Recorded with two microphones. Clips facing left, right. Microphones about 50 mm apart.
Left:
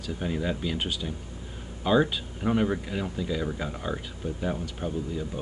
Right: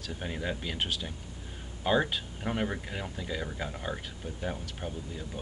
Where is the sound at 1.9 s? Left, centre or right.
Centre.